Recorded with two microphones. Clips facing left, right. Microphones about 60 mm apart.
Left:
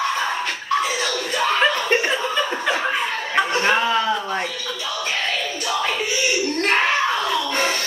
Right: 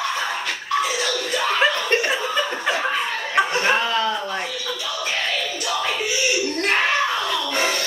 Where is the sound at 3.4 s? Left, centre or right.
Centre.